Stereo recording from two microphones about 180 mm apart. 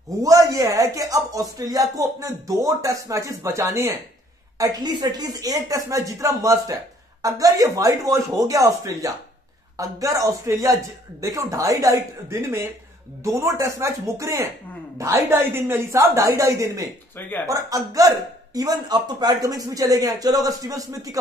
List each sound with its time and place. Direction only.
0.2 s a man's voice: 20° right (ahead or behind)